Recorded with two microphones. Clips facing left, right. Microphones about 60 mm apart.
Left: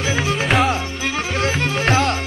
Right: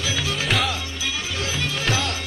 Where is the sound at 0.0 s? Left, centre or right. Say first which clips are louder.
Left 5 dB; left.